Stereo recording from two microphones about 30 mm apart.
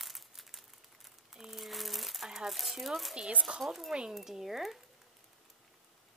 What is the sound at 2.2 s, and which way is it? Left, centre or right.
Crumpling, centre.